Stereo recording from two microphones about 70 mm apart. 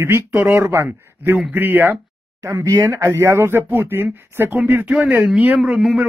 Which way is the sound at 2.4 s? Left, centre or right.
Right.